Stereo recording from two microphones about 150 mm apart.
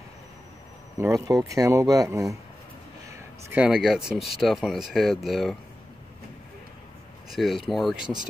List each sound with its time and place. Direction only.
0.9 s speech: 20° right (ahead or behind)
3.4 s speech: 10° right (ahead or behind)
7.2 s speech: centre (ahead or behind)